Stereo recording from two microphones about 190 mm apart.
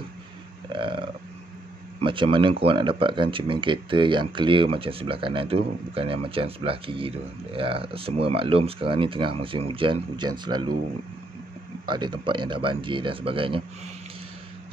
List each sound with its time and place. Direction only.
0.7 s burping: 25° right (ahead or behind)
2.0 s speech: 25° right (ahead or behind)
11.9 s speech: 25° right (ahead or behind)